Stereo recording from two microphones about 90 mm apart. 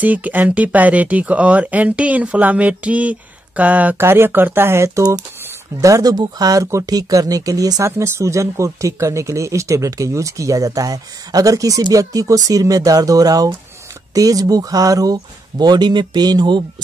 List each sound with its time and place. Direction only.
0.0 s speech: 20° right (ahead or behind); by 15.1 s 40° right (ahead or behind)
15.6 s speech: 50° right (ahead or behind)